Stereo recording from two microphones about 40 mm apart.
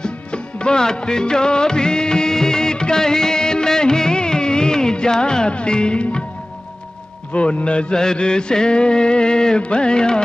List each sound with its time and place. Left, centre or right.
0.0 s music: left
7.6 s music: left